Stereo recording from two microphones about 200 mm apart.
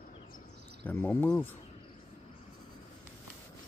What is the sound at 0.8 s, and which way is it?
Speech, 10° left (ahead or behind).